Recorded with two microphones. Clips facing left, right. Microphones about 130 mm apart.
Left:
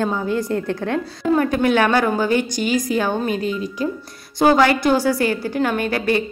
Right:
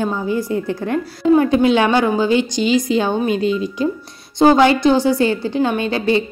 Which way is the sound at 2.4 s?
50° left (ahead or behind).